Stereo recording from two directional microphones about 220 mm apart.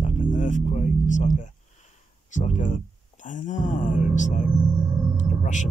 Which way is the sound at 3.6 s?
35° left (ahead or behind).